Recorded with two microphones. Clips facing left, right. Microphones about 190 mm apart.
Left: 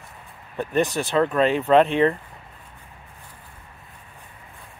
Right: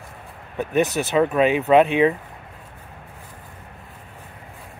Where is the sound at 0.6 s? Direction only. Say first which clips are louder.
Right 2 dB; 5° right (ahead or behind).